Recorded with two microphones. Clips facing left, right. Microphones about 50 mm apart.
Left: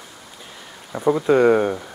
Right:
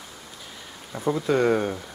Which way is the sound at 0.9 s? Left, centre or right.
Centre.